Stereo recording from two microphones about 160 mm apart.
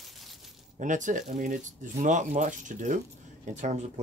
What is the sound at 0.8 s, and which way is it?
Speech, 55° right (ahead or behind).